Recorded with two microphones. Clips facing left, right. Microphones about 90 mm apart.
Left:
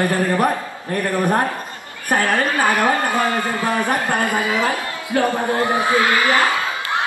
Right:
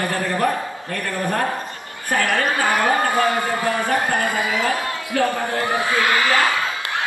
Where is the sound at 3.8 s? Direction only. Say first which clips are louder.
Left 1 dB; 20° left (ahead or behind).